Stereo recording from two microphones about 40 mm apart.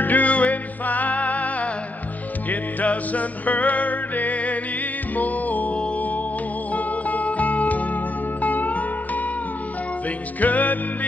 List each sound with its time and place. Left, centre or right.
0.0 s music: left